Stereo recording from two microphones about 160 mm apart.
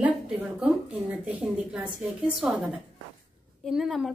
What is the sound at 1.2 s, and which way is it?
A woman's voice, 5° right (ahead or behind).